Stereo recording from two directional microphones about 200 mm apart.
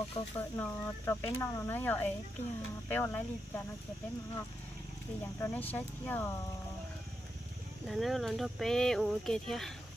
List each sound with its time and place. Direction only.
0.2 s speech: 30° left (ahead or behind)
0.6 s speech: 10° left (ahead or behind)
5.2 s speech: 10° left (ahead or behind)
7.8 s speech: centre (ahead or behind)